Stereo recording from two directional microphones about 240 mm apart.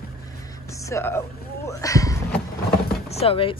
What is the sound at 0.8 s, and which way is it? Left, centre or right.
Speech, centre.